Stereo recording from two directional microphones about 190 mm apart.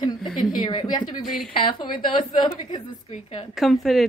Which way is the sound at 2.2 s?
25° left (ahead or behind).